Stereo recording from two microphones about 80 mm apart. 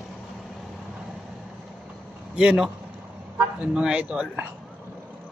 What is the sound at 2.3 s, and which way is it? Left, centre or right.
A man's voice, centre.